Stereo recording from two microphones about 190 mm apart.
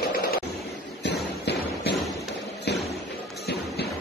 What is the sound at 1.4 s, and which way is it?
Tap, 60° left (ahead or behind).